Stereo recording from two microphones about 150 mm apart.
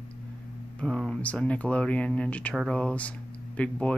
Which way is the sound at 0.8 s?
Centre (ahead or behind).